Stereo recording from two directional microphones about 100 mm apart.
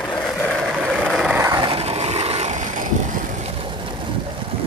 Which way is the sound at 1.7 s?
80° right.